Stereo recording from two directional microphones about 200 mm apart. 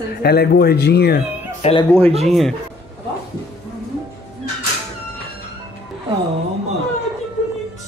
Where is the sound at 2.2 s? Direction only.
Centre (ahead or behind).